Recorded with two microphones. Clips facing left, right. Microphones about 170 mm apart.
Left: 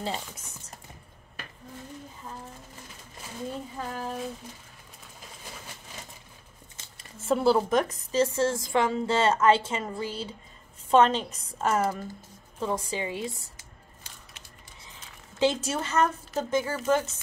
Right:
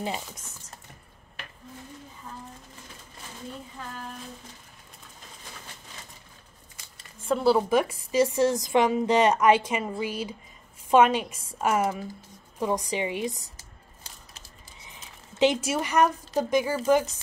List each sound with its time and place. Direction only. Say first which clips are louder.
7.0 s a woman's voice: left 1 dB; 5° left (ahead or behind); by 13.3 s 20° right (ahead or behind)
14.8 s a sound: right 1 dB; 15° right (ahead or behind)
16.8 s a woman's voice: right 3 dB; 15° right (ahead or behind)